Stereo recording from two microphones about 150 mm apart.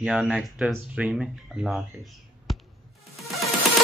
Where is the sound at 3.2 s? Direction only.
Centre (ahead or behind).